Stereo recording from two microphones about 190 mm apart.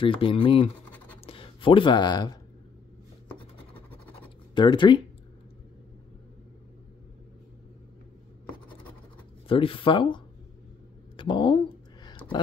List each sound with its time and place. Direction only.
0.0 s speech: 25° left (ahead or behind)
4.6 s speech: 25° left (ahead or behind)
9.5 s speech: 30° left (ahead or behind)
11.1 s a sound: 25° left (ahead or behind)